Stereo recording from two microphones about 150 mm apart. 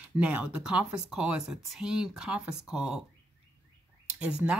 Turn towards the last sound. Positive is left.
turn(degrees=-10)  # may be behind; listen again after turning